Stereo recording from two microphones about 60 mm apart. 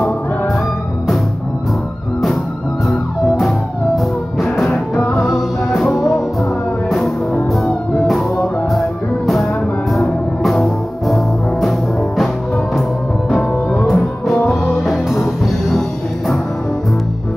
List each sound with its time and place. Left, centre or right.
2.9 s music: centre
7.5 s music: centre
13.4 s music: left
13.8 s music: centre